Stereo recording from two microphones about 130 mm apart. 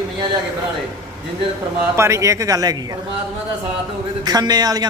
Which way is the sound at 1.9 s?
20° right (ahead or behind).